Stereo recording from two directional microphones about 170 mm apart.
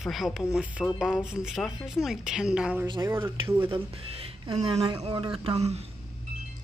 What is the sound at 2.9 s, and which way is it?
Speech, 15° right (ahead or behind).